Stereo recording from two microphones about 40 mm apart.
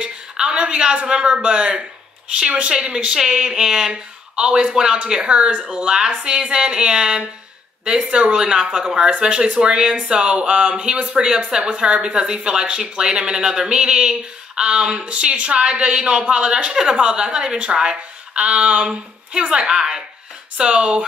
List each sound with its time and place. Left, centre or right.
0.0 s a sound: right
1.0 s speech: right
3.9 s speech: right
5.7 s speech: centre
18.3 s speech: right